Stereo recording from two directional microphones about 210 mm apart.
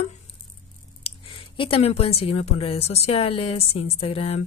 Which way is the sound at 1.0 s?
25° left (ahead or behind).